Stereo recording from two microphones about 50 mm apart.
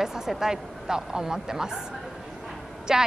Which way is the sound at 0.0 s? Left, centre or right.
Centre.